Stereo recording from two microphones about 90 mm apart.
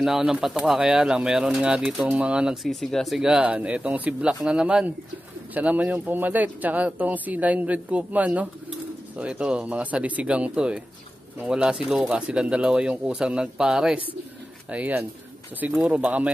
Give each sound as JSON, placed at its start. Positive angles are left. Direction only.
{"t": 0.0, "sound": "speech", "side_deg": -5}
{"t": 3.2, "sound": "speech", "side_deg": -10}